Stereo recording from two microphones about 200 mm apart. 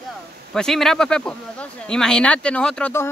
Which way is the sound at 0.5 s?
Centre (ahead or behind).